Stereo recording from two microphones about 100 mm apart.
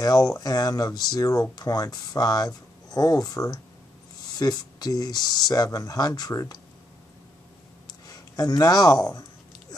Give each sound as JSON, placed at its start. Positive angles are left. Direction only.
{"t": 0.0, "sound": "speech", "side_deg": 35}
{"t": 8.1, "sound": "speech", "side_deg": 40}